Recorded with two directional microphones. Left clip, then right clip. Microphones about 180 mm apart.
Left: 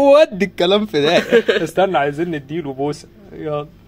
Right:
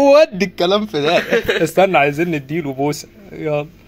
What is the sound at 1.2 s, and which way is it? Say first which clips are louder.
Speech: left 3 dB; 40° left (ahead or behind).